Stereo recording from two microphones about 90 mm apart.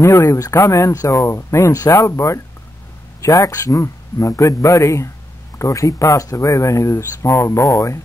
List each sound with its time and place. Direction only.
0.0 s speech: 35° left (ahead or behind)